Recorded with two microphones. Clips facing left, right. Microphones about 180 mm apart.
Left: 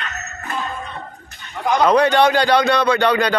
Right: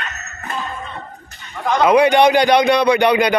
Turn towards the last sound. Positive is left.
turn(degrees=-15)  # may be behind; listen again after turning